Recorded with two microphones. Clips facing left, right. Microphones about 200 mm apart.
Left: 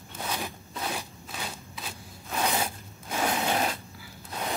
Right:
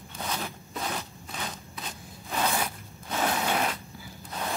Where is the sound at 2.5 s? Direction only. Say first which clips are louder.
Left 3 dB; 25° left (ahead or behind).